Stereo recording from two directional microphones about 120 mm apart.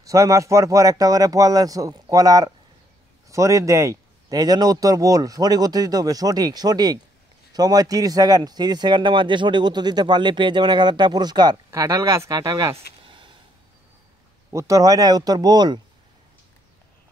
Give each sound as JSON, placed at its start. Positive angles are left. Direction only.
{"t": 0.0, "sound": "speech", "side_deg": -25}
{"t": 12.7, "sound": "a sound", "side_deg": -45}
{"t": 14.5, "sound": "speech", "side_deg": -25}